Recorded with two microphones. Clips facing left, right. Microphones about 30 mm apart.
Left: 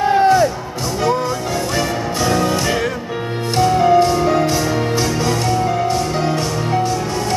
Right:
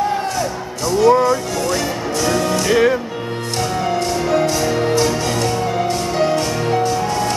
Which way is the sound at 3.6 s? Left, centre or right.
Centre.